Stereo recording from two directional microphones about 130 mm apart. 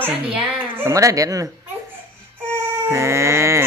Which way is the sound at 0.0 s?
15° right (ahead or behind).